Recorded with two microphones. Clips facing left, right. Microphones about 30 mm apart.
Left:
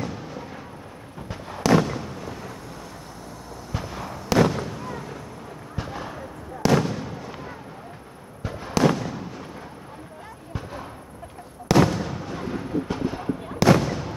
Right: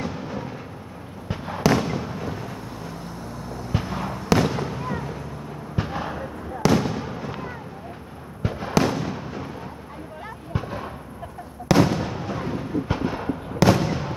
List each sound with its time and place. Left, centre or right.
0.0 s a sound: centre
1.3 s fireworks: centre
3.7 s fireworks: centre
5.8 s a sound: centre
6.9 s fireworks: centre
8.4 s fireworks: centre
10.5 s artillery fire: centre
11.6 s fireworks: centre